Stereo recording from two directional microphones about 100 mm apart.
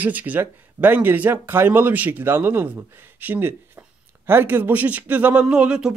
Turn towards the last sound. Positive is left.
turn(degrees=-10)  # may be behind; listen again after turning